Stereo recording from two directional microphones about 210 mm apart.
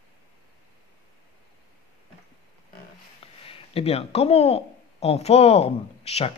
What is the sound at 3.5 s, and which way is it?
Speech, 25° left (ahead or behind).